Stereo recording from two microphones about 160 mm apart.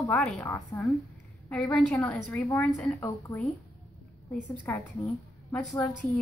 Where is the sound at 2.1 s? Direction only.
5° left (ahead or behind).